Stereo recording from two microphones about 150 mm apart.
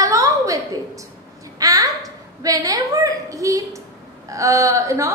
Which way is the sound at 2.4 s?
25° right (ahead or behind).